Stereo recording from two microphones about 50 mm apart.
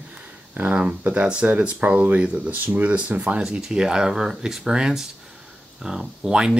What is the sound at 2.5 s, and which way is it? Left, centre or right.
Speech, right.